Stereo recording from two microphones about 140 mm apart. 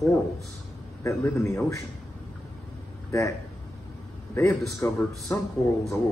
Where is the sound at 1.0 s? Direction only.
20° left (ahead or behind).